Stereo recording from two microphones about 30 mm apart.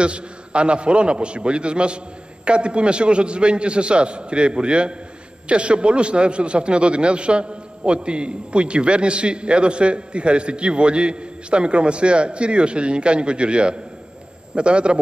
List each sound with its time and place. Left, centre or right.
0.0 s a man's voice: right